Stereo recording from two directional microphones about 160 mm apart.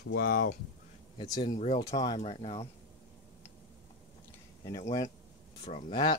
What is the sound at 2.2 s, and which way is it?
Speech, 40° left (ahead or behind).